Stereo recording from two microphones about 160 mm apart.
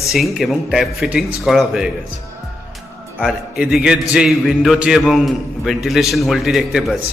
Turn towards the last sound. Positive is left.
turn(degrees=0)  # may be behind; listen again after turning